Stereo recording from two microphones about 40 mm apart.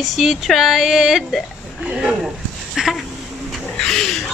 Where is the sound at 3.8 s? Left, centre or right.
Centre.